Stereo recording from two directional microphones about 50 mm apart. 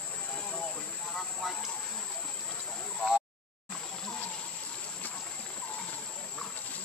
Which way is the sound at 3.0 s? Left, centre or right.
Centre.